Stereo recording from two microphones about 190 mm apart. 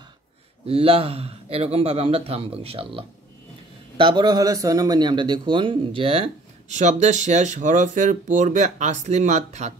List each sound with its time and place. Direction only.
0.7 s a man's voice: 30° right (ahead or behind)